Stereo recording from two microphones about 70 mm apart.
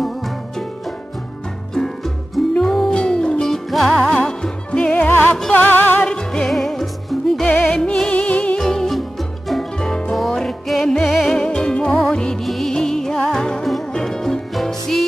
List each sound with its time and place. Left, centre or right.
1.7 s music: centre; by 6.0 s left
6.0 s music: centre
7.4 s music: left
7.7 s music: centre
8.5 s music: centre